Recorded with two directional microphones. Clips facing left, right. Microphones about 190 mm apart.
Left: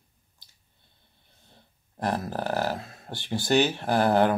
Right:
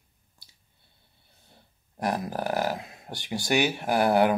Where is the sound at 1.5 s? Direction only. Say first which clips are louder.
Even; 15° right (ahead or behind).